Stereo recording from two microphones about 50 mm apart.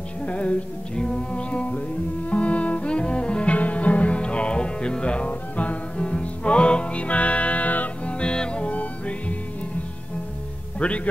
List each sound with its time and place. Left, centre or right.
0.2 s music: left
10.8 s a man's voice: left